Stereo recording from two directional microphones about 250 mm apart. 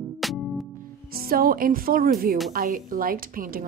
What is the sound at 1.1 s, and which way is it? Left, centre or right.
Speech, right.